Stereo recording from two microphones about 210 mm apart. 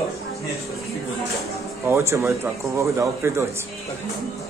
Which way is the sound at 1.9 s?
15° right (ahead or behind).